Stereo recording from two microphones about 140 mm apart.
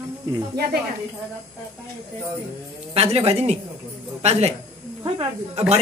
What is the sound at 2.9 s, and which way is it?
Speech, 45° right (ahead or behind).